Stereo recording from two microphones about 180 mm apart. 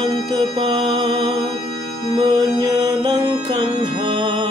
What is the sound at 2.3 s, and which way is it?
Mantra, 25° right (ahead or behind).